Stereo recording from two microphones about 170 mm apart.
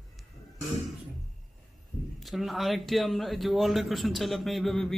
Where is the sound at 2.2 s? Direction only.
Centre (ahead or behind).